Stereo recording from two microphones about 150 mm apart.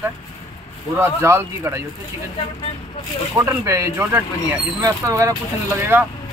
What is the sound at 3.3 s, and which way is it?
Speech, 20° right (ahead or behind).